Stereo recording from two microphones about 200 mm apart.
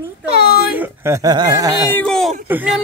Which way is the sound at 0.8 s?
15° right (ahead or behind).